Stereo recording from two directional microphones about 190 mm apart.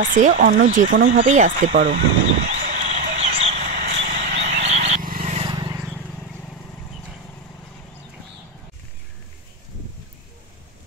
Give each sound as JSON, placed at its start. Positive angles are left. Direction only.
{"t": 0.0, "sound": "speech", "side_deg": -40}
{"t": 1.1, "sound": "speech", "side_deg": -40}
{"t": 2.5, "sound": "a sound", "side_deg": -35}
{"t": 4.4, "sound": "frog", "side_deg": -35}
{"t": 5.2, "sound": "vehicle", "side_deg": -30}